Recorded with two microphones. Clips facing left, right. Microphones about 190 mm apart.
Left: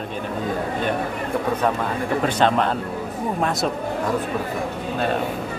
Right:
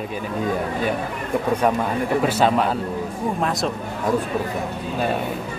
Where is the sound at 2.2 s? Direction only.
5° right (ahead or behind).